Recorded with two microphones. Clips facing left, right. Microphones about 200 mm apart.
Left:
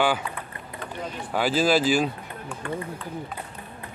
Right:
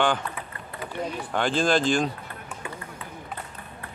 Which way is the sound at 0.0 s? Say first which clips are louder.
Left 1 dB; 5° left (ahead or behind).